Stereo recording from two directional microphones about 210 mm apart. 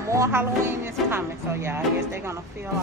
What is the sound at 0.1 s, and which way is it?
Speech, 15° right (ahead or behind).